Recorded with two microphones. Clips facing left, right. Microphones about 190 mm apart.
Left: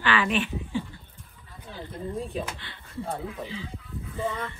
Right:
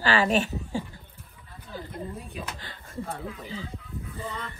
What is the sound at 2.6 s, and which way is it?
Music, 40° right (ahead or behind).